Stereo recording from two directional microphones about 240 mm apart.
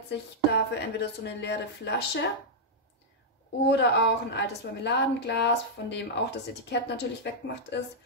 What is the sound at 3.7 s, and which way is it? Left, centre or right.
Speech, left.